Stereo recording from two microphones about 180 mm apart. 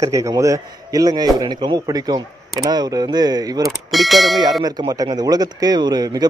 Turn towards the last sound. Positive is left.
turn(degrees=-20)  # may be behind; listen again after turning